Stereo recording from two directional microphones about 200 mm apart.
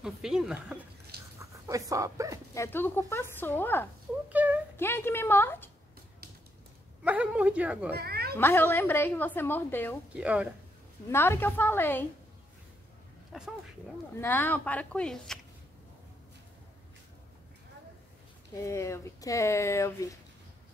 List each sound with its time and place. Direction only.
0.0 s a woman's voice: centre (ahead or behind)
1.4 s speech: 15° right (ahead or behind)
2.5 s speech: 15° left (ahead or behind)
4.3 s a sound: 10° right (ahead or behind)
4.7 s speech: 10° left (ahead or behind)
7.0 s a woman's voice: 5° right (ahead or behind)
7.9 s cat: 50° right (ahead or behind)
8.4 s speech: 10° left (ahead or behind)
10.1 s a woman's voice: 5° right (ahead or behind)
11.1 s speech: 10° left (ahead or behind)
13.3 s speech: centre (ahead or behind)
14.1 s speech: 10° left (ahead or behind)
18.5 s speech: 15° left (ahead or behind)